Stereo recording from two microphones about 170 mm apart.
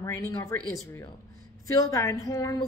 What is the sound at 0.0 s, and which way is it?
Speech, 20° left (ahead or behind).